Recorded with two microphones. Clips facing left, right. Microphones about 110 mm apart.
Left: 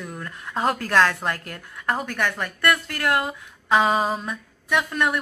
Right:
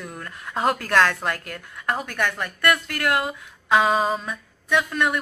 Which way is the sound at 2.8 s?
30° left (ahead or behind).